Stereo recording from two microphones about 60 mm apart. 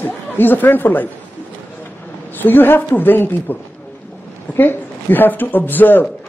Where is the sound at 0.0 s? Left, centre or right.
Left.